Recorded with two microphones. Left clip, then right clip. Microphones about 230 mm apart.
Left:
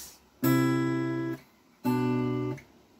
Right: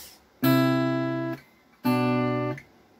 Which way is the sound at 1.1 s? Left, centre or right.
Right.